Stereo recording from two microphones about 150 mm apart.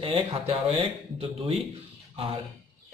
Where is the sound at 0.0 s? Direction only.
40° right (ahead or behind).